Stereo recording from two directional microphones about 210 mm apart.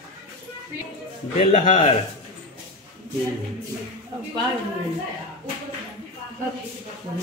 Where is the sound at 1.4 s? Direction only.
35° left (ahead or behind).